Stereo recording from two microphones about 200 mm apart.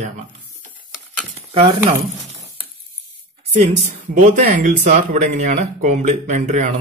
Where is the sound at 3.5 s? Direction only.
35° right (ahead or behind).